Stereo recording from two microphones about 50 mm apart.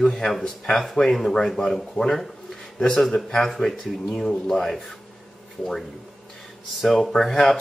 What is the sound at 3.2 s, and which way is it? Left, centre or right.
Speech, centre.